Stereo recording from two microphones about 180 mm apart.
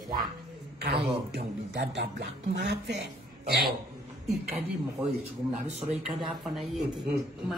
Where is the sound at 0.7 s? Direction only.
65° right (ahead or behind).